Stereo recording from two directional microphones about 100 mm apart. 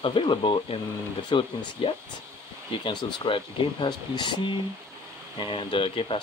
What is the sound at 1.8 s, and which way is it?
Speech, 65° left (ahead or behind).